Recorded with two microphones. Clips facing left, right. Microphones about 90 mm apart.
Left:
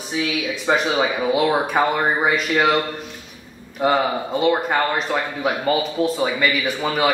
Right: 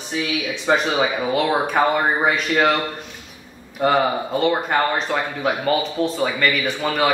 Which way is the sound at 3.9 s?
Centre (ahead or behind).